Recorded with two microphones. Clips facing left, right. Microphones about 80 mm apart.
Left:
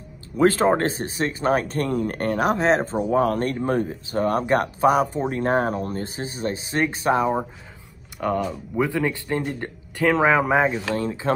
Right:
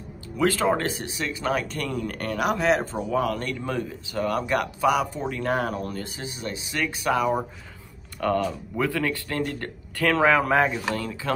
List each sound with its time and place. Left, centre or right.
0.4 s speech: left
8.2 s speech: centre